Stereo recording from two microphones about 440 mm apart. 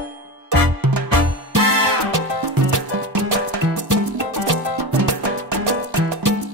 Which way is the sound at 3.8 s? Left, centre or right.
Right.